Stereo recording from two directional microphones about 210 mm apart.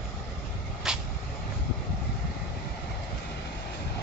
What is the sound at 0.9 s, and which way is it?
Vehicle, 5° right (ahead or behind).